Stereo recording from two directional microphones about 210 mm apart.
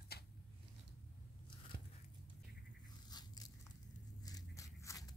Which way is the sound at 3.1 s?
20° left (ahead or behind).